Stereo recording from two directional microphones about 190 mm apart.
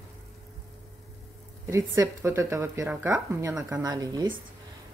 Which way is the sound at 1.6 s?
15° right (ahead or behind).